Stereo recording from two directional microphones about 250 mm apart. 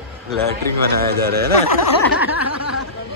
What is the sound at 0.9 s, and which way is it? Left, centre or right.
Speech, right.